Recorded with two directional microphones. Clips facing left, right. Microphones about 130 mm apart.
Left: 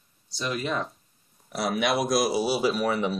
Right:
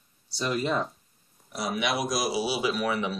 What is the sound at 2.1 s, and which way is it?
Speech, centre (ahead or behind).